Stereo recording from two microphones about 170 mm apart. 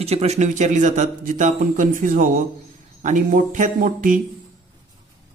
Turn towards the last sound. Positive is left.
turn(degrees=-50)  # may be behind; listen again after turning